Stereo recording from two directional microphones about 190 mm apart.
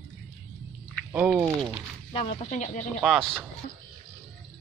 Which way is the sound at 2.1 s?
30° left (ahead or behind).